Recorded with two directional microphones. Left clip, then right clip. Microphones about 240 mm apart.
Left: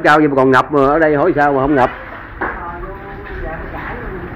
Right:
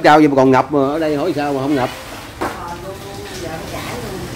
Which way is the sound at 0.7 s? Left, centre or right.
Centre.